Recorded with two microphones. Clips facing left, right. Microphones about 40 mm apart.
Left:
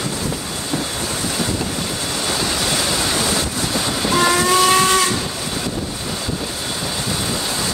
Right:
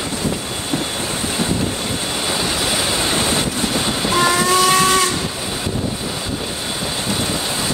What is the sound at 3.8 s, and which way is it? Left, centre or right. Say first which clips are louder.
Train: left 1 dB; centre.